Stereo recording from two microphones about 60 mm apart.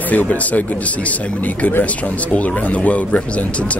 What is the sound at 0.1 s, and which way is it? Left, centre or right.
Speech, left.